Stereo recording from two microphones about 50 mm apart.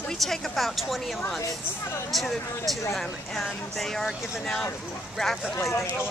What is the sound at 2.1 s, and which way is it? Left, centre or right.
Speech, centre.